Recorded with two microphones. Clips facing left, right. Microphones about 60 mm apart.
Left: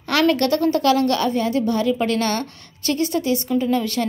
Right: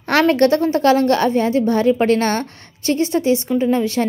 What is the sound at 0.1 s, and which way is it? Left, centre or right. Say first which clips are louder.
A woman's voice: right 4 dB; right.